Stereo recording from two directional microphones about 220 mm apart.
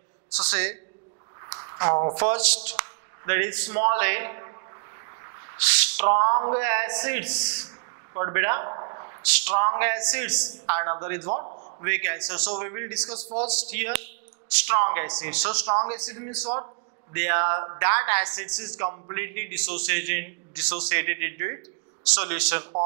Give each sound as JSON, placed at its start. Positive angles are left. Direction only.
{"t": 0.4, "sound": "a man's voice", "side_deg": -10}
{"t": 2.3, "sound": "a man's voice", "side_deg": -10}
{"t": 6.6, "sound": "a man's voice", "side_deg": -15}
{"t": 7.6, "sound": "a sound", "side_deg": -20}
{"t": 9.2, "sound": "a man's voice", "side_deg": -10}
{"t": 11.2, "sound": "a sound", "side_deg": -30}
{"t": 11.8, "sound": "a man's voice", "side_deg": -15}
{"t": 15.6, "sound": "speech", "side_deg": -25}
{"t": 15.9, "sound": "a man's voice", "side_deg": -10}
{"t": 17.4, "sound": "a man's voice", "side_deg": -25}